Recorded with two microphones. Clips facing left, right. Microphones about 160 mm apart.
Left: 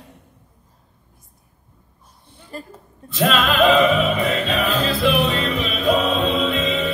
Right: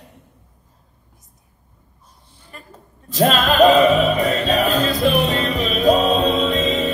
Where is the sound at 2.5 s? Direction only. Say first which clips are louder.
Left 8 dB; 35° left (ahead or behind).